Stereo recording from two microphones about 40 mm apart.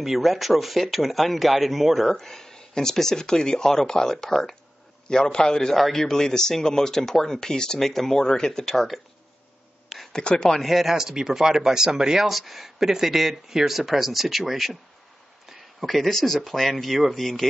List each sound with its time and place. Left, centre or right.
0.0 s speech: centre
10.1 s speech: centre
10.6 s speech: centre
15.8 s speech: centre